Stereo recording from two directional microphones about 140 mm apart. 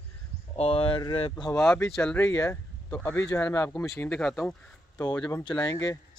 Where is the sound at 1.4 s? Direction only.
25° left (ahead or behind).